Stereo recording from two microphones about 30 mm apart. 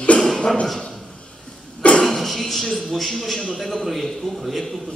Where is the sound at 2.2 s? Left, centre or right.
Centre.